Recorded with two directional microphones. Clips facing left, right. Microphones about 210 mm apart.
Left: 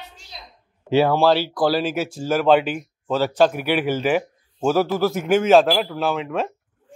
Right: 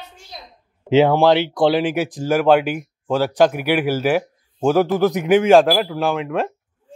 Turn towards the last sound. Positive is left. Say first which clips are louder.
# right 2 dB
turn(degrees=-10)  # may be behind; listen again after turning